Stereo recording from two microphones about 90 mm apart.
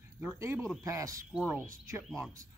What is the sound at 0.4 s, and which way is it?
Speech, 30° right (ahead or behind).